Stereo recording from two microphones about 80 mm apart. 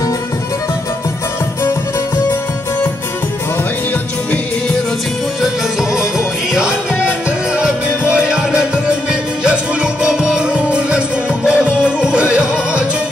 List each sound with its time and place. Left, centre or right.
5.4 s music: centre
6.9 s music: left
7.2 s music: centre